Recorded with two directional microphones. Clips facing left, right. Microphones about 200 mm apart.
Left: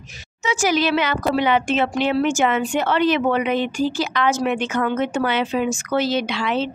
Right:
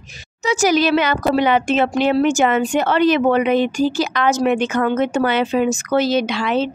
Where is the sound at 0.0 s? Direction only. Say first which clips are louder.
Right 3 dB; 35° right (ahead or behind).